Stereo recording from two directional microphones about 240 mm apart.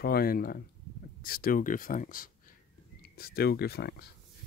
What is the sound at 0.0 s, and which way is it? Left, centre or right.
Speech, left.